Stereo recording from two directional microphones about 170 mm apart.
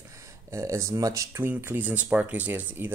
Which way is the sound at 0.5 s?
15° right (ahead or behind).